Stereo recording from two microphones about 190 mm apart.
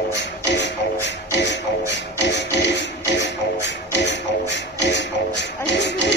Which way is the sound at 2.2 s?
70° left (ahead or behind).